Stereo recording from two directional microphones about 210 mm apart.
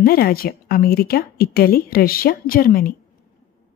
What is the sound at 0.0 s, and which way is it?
A woman's voice, 45° left (ahead or behind).